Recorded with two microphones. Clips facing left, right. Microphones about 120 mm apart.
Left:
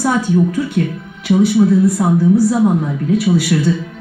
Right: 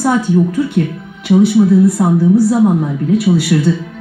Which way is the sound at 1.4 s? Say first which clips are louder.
Right 2 dB; centre (ahead or behind).